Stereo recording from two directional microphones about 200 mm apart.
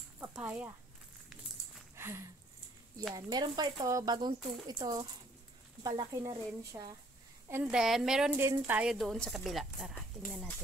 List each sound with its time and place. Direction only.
0.2 s speech: 10° right (ahead or behind)
2.0 s a sound: 10° right (ahead or behind)
3.2 s speech: 20° right (ahead or behind)
7.4 s a woman's voice: 5° right (ahead or behind)